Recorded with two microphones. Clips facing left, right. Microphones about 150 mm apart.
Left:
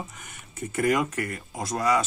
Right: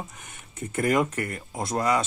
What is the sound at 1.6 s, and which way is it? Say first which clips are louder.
Speech: even; 25° right (ahead or behind).